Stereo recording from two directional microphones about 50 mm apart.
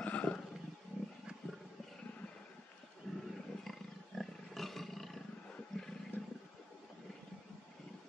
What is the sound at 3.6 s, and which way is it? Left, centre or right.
Roar, centre.